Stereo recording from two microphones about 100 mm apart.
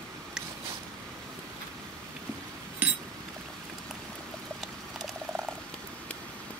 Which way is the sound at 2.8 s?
15° right (ahead or behind).